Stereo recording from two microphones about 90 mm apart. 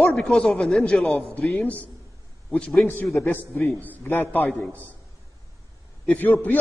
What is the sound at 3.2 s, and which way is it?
A man's voice, 20° left (ahead or behind).